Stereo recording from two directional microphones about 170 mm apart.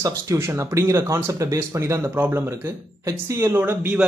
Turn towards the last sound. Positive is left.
turn(degrees=-10)  # may be behind; listen again after turning